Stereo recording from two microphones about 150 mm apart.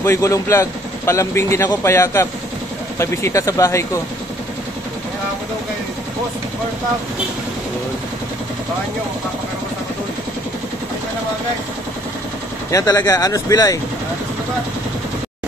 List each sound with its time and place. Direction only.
0.0 s speech: 20° left (ahead or behind)
12.7 s speech: 20° left (ahead or behind)